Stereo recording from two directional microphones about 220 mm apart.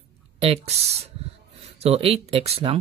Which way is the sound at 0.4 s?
25° right (ahead or behind).